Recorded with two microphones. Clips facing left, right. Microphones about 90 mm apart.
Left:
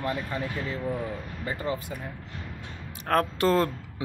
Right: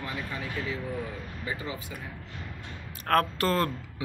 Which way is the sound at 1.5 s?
50° left (ahead or behind).